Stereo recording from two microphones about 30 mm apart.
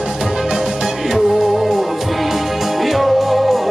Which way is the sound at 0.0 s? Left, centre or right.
Centre.